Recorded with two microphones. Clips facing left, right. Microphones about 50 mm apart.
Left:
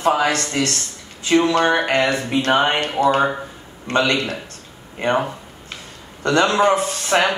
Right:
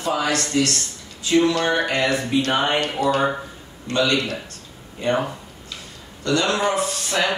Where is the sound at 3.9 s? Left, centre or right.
Left.